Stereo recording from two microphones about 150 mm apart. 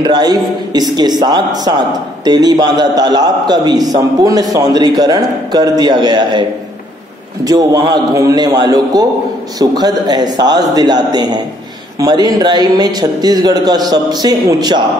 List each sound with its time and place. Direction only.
0.0 s a man's voice: 30° right (ahead or behind)
7.4 s a man's voice: 25° right (ahead or behind)